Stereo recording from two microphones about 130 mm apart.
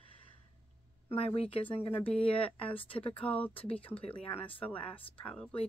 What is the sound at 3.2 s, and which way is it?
Speech, 10° left (ahead or behind).